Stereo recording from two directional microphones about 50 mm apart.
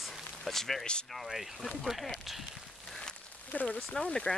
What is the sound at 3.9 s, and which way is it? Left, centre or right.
Speech, centre.